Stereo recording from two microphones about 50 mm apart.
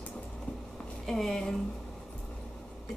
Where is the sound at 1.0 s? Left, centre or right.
Centre.